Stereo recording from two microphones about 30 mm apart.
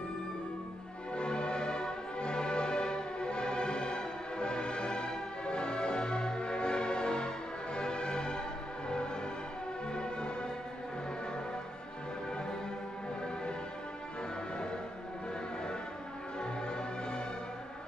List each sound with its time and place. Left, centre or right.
1.1 s music: left
16.3 s music: left